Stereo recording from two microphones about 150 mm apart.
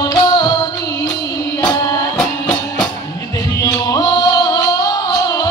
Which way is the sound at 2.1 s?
5° left (ahead or behind).